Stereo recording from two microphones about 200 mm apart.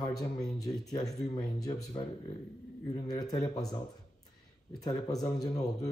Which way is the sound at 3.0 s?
20° left (ahead or behind).